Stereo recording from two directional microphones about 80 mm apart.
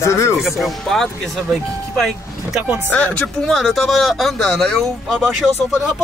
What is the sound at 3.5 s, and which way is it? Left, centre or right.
Speech, centre.